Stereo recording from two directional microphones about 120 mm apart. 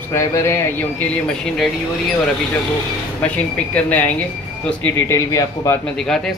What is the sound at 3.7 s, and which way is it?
A man's voice, 15° left (ahead or behind).